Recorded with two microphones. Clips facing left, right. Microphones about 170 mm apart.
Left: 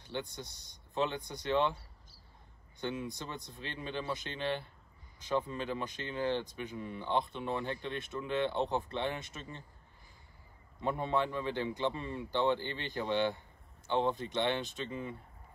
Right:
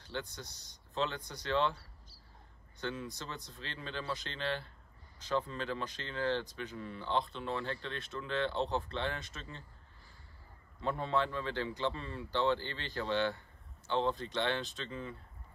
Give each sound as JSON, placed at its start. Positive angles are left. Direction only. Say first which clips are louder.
{"t": 0.3, "sound": "speech", "louder": "left 3 dB", "side_deg": 55}
{"t": 0.9, "sound": "speech", "louder": "left 2 dB", "side_deg": 15}
{"t": 2.8, "sound": "speech", "louder": "left 2 dB", "side_deg": 15}
{"t": 10.8, "sound": "speech", "louder": "left 1 dB", "side_deg": 15}